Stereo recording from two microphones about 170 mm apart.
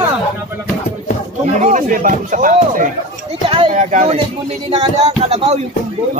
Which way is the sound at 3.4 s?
30° right (ahead or behind).